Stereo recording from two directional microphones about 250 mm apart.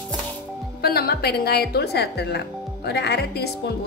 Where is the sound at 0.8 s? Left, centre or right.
Left.